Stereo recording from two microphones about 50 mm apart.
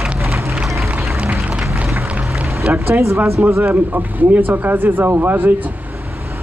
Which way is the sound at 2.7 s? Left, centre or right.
Right.